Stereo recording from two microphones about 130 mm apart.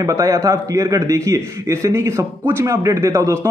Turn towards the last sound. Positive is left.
turn(degrees=-20)  # may be behind; listen again after turning